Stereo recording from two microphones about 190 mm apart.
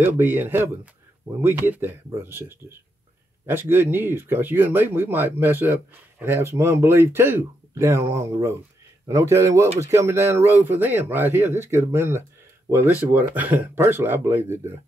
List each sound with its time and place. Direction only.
0.0 s speech: 10° right (ahead or behind)